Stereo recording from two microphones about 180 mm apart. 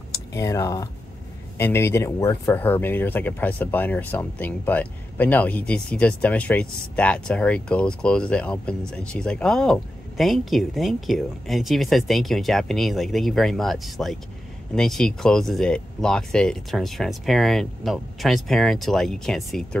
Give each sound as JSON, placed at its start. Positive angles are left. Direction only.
{"t": 0.1, "sound": "speech", "side_deg": 15}